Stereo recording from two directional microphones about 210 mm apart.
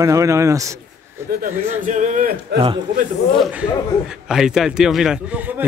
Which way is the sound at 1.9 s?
35° right (ahead or behind).